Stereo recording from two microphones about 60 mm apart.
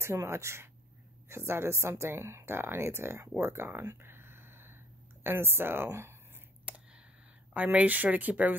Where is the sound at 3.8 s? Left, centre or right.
Right.